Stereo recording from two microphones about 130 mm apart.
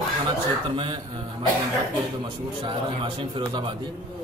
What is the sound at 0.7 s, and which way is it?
Speech, 40° right (ahead or behind).